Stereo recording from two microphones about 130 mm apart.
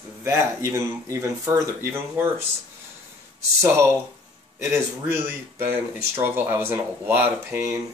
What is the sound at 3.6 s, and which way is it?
Speech, 20° right (ahead or behind).